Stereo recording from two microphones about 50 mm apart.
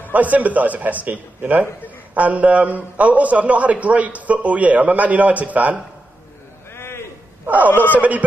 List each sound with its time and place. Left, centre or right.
0.0 s a man's voice: right
6.7 s a sound: left
7.4 s a man's voice: right